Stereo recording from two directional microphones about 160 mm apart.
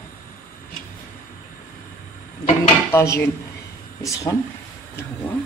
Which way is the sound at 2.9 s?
15° left (ahead or behind).